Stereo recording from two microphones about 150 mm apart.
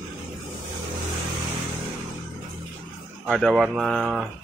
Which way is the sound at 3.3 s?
Centre (ahead or behind).